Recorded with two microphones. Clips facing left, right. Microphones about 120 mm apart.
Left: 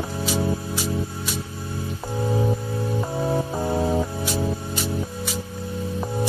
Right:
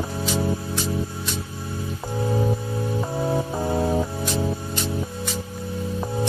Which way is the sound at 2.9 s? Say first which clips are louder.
Even; centre (ahead or behind).